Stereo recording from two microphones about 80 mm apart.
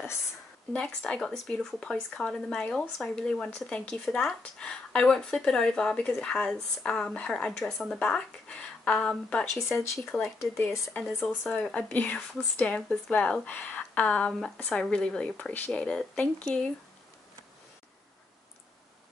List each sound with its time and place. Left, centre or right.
0.8 s speech: centre
7.7 s speech: centre
8.0 s speech: centre
9.6 s speech: left
11.1 s speech: centre
11.5 s speech: centre